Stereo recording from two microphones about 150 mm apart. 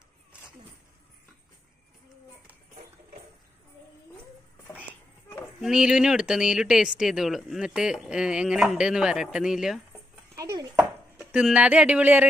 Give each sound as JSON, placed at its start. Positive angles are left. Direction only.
{"t": 5.6, "sound": "speech", "side_deg": -5}
{"t": 10.5, "sound": "a sound", "side_deg": -20}
{"t": 11.1, "sound": "speech", "side_deg": -5}